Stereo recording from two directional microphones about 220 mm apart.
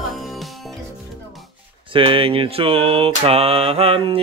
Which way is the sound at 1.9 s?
25° right (ahead or behind).